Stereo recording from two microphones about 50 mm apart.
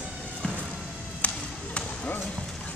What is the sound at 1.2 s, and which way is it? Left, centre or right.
Music, left.